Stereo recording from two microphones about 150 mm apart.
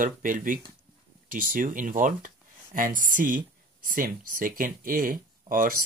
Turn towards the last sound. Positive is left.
turn(degrees=-65)  # may be behind; listen again after turning